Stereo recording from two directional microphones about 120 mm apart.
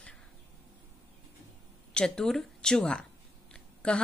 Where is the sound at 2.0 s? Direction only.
5° left (ahead or behind).